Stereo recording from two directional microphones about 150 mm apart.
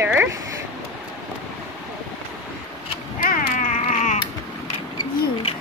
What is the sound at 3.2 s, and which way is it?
Cat, 65° left (ahead or behind).